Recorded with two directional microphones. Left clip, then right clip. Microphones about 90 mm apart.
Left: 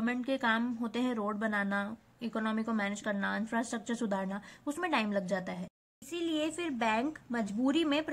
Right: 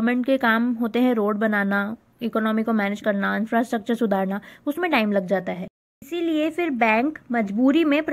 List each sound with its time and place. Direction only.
0.0 s a woman's voice: 40° right (ahead or behind)